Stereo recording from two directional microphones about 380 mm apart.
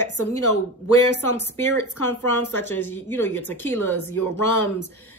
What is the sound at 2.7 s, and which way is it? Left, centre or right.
Speech, centre.